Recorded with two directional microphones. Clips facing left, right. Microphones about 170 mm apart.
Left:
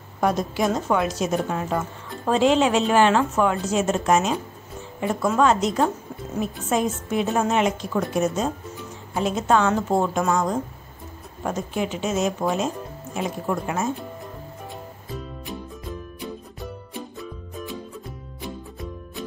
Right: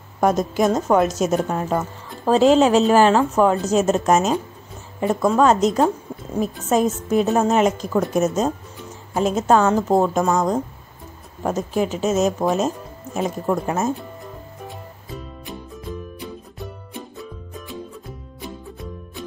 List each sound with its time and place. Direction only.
0.2 s speech: 45° right (ahead or behind)
11.4 s speech: 40° right (ahead or behind)
15.0 s music: centre (ahead or behind)
17.2 s music: centre (ahead or behind)